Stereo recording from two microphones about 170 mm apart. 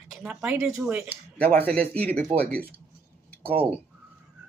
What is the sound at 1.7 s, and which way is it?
Speech, 10° left (ahead or behind).